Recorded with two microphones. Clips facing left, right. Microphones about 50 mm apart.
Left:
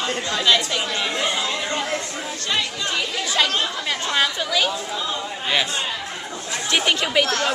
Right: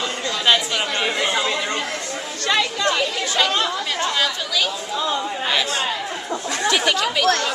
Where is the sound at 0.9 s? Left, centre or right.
Centre.